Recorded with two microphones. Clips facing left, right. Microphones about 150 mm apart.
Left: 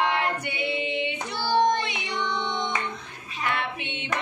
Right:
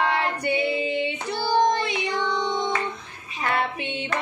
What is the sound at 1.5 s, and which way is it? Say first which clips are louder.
Child singing: right 1 dB; centre (ahead or behind).